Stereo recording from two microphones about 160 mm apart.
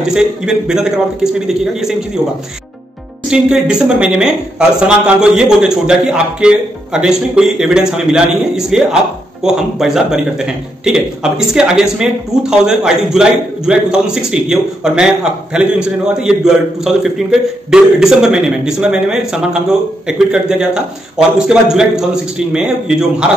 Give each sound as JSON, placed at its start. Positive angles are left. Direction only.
{"t": 0.1, "sound": "speech", "side_deg": -5}
{"t": 3.3, "sound": "speech", "side_deg": -5}